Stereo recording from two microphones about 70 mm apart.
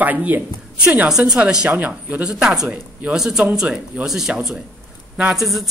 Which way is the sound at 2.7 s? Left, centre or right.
Centre.